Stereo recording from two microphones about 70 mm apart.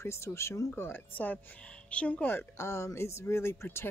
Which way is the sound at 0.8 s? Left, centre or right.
Left.